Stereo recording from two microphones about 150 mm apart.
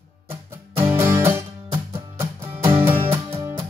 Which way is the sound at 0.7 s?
15° right (ahead or behind).